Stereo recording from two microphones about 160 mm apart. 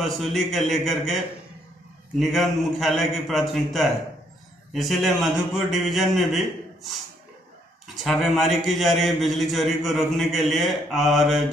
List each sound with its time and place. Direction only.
0.0 s a man's voice: centre (ahead or behind)